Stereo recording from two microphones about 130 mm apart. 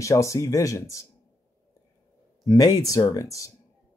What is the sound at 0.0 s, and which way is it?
Speech, 25° left (ahead or behind).